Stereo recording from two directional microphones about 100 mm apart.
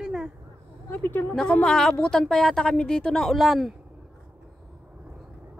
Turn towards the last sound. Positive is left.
turn(degrees=0)  # may be behind; listen again after turning